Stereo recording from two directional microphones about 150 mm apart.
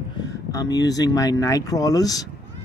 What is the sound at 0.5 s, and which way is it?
Speech, 25° left (ahead or behind).